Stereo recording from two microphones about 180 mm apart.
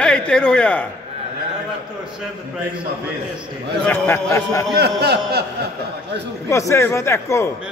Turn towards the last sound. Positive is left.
turn(degrees=15)  # may be behind; listen again after turning